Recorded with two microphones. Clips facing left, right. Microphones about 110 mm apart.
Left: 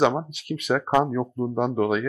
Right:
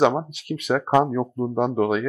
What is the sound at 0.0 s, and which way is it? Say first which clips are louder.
Speech: right 2 dB; 30° right (ahead or behind).